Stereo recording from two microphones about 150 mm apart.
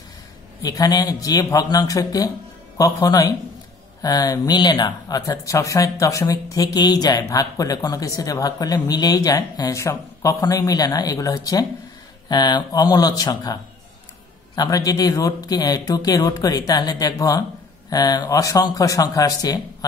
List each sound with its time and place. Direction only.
0.6 s speech: 25° left (ahead or behind)